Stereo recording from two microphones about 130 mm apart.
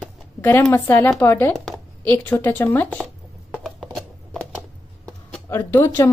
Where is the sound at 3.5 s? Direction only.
Centre (ahead or behind).